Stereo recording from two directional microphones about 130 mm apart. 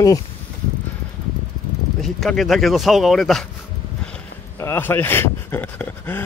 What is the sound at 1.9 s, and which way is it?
Speech, centre (ahead or behind).